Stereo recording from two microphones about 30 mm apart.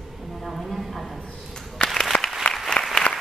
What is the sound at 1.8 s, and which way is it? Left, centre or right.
Applause, left.